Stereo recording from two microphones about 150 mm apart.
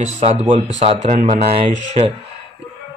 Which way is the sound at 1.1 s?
55° right (ahead or behind).